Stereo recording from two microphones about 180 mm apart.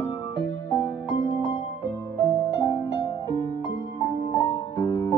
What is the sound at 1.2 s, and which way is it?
Music, 30° left (ahead or behind).